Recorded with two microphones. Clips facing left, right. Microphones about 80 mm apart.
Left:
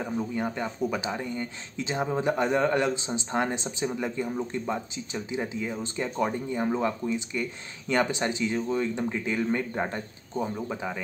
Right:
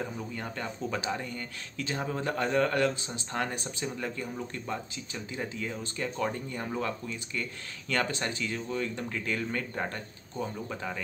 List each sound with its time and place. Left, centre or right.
0.2 s speech: centre